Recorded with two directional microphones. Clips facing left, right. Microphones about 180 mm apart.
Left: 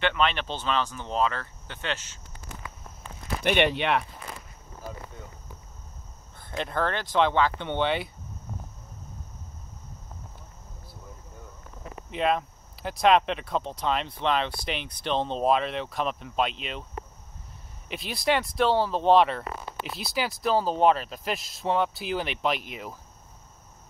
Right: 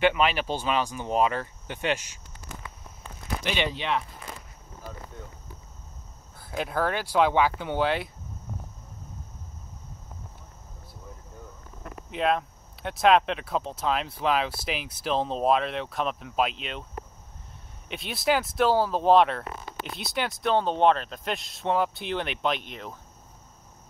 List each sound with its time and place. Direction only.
0.0 s speech: 10° right (ahead or behind)
3.4 s speech: 60° left (ahead or behind)
6.3 s speech: 5° right (ahead or behind)
12.1 s speech: centre (ahead or behind)
17.8 s speech: centre (ahead or behind)